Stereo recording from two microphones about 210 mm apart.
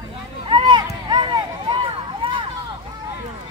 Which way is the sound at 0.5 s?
25° right (ahead or behind).